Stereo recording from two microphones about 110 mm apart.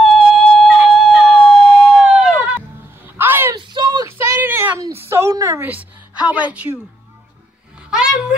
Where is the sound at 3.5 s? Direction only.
45° right (ahead or behind).